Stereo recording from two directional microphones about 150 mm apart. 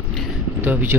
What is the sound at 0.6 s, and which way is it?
Speech, 10° right (ahead or behind).